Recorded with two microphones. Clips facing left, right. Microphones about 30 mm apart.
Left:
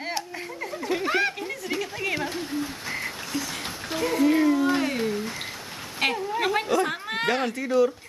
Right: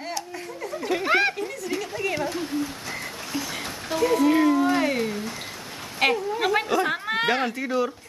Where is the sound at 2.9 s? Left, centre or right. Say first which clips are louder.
Left 2 dB; centre.